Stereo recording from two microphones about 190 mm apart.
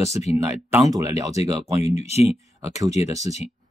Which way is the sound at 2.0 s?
35° left (ahead or behind).